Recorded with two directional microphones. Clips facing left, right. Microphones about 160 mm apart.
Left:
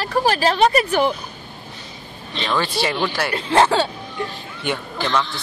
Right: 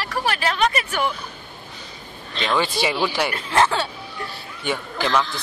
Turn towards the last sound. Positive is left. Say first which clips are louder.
# even
turn(degrees=0)  # may be behind; listen again after turning